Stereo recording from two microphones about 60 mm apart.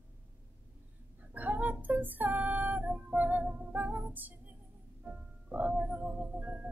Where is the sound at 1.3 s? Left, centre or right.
Right.